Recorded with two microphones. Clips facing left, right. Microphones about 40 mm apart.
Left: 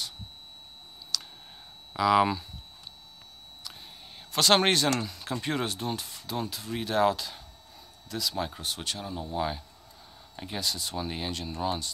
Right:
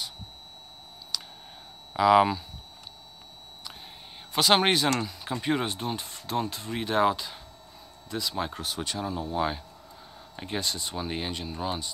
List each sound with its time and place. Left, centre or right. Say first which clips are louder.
1.1 s clicking: left 1 dB; centre
2.0 s speech: right 3 dB; centre
3.6 s speech: right 2 dB; centre
8.6 s speech: right 3 dB; centre
9.2 s speech: right 1 dB; centre